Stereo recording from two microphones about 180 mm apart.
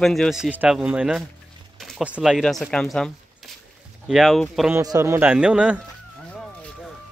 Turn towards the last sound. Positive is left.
turn(degrees=-5)  # may be behind; listen again after turning